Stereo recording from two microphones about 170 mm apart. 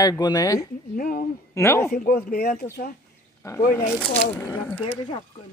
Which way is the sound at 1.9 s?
60° left (ahead or behind).